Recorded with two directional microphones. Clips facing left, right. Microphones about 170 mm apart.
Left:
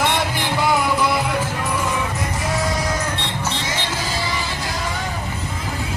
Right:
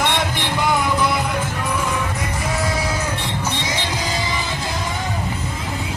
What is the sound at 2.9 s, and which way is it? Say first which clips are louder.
Music: even; 10° right (ahead or behind).